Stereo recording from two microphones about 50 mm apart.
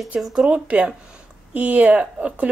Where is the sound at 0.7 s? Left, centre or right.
Right.